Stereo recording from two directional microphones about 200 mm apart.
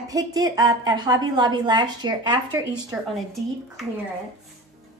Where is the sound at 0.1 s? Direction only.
20° right (ahead or behind).